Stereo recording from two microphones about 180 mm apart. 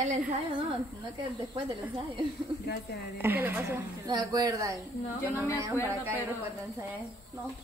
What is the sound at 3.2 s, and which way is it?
Moo, 10° right (ahead or behind).